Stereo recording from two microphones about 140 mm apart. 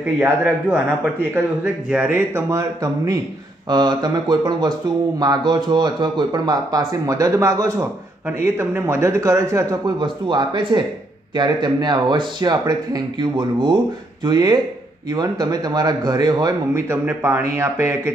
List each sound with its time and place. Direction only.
0.0 s speech: 15° right (ahead or behind)
9.9 s speech: 35° right (ahead or behind)
16.7 s speech: 15° right (ahead or behind)